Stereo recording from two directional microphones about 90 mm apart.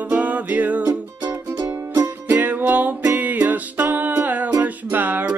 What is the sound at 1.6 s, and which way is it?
Music, 30° right (ahead or behind).